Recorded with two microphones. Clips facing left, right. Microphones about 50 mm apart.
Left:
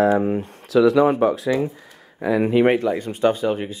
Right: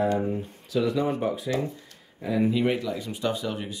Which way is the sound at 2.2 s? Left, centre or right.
Left.